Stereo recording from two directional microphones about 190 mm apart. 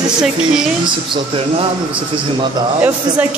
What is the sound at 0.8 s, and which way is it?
Speech, 25° right (ahead or behind).